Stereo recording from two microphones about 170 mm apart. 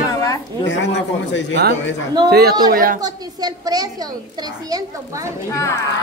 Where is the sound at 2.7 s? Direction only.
55° right (ahead or behind).